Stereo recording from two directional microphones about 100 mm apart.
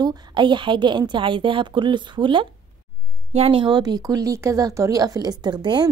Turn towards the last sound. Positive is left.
turn(degrees=-45)  # may be behind; listen again after turning